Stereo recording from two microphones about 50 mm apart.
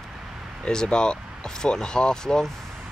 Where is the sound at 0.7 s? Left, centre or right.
Centre.